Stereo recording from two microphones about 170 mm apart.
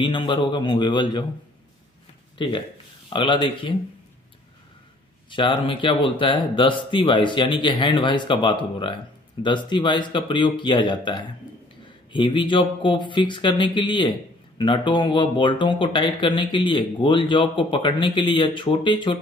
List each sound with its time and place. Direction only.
0.0 s speech: 30° left (ahead or behind)
2.3 s speech: 30° left (ahead or behind)
5.3 s speech: 30° left (ahead or behind)